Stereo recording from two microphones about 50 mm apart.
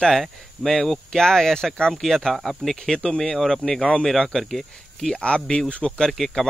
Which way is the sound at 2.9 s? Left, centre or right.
Centre.